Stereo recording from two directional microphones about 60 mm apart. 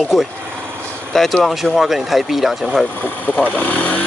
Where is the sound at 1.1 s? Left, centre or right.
Centre.